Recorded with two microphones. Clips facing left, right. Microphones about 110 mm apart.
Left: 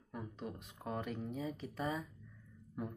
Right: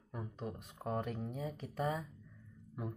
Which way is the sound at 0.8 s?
45° right (ahead or behind).